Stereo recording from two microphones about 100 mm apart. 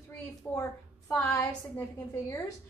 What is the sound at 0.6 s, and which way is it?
A woman's voice, 25° left (ahead or behind).